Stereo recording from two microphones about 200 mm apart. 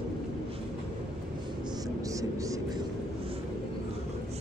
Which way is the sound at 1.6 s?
20° right (ahead or behind).